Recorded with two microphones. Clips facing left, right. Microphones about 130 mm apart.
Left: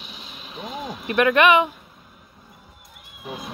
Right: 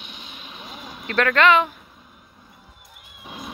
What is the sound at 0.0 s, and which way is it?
Vehicle, centre (ahead or behind).